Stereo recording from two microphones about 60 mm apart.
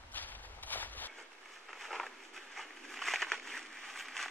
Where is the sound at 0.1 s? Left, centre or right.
Left.